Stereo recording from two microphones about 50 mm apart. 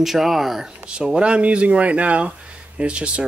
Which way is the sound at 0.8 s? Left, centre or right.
Centre.